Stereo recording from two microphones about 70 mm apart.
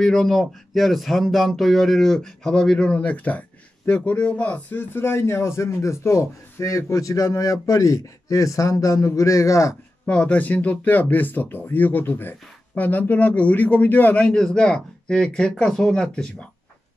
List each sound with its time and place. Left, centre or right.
0.0 s speech: centre; by 9.8 s left
10.0 s speech: centre